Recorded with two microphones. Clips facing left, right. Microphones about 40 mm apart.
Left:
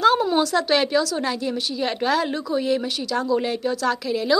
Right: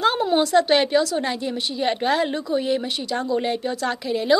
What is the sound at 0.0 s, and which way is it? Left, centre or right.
A woman's voice, centre.